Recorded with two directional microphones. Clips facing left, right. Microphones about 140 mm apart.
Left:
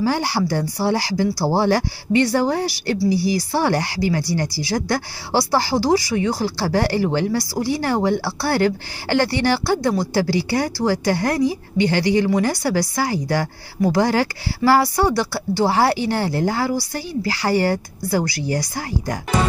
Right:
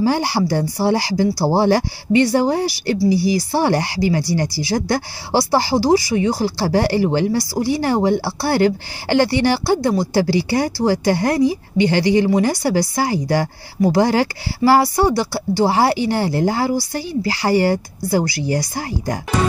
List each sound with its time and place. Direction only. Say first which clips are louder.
0.0 s speech: right 3 dB; 20° right (ahead or behind)
5.6 s speech: right 3 dB; 15° right (ahead or behind)
8.2 s speech: right 2 dB; 30° right (ahead or behind)
15.0 s speech: right 2 dB; 10° right (ahead or behind)
16.3 s speech: right 2 dB; 25° right (ahead or behind)
18.5 s speech: right 2 dB; 30° right (ahead or behind)